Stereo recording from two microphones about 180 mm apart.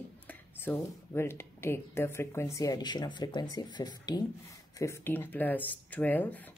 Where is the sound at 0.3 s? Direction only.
10° left (ahead or behind).